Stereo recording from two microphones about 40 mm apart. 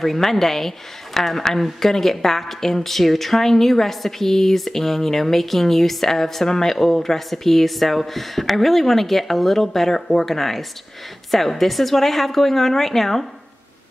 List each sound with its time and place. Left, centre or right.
0.0 s a woman's voice: centre